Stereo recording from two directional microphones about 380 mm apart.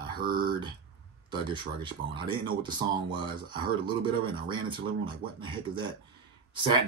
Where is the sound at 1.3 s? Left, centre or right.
Centre.